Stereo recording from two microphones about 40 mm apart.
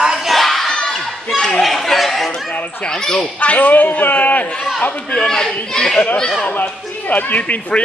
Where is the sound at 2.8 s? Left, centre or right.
Centre.